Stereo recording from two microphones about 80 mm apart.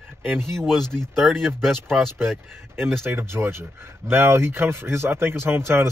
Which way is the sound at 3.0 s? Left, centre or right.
Right.